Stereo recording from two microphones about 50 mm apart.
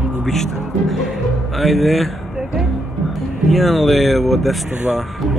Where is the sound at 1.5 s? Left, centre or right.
Centre.